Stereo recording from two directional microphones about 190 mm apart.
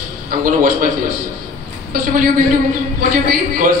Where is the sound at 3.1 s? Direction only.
45° right (ahead or behind).